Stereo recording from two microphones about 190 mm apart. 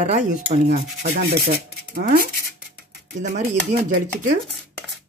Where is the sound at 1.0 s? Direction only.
60° right (ahead or behind).